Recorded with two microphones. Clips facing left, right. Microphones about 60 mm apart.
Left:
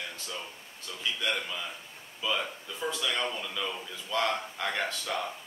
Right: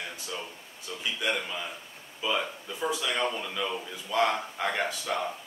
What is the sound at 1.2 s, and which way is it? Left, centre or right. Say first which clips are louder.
Speech: right 3 dB; centre.